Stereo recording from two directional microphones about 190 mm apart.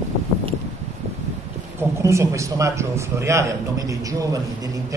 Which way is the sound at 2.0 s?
15° right (ahead or behind).